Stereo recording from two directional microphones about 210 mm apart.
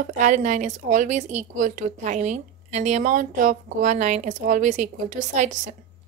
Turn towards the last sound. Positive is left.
turn(degrees=-35)  # may be behind; listen again after turning